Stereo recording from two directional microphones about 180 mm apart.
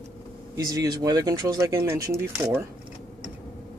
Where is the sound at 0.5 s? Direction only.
20° right (ahead or behind).